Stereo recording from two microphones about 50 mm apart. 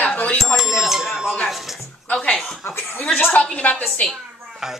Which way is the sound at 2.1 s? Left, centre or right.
Centre.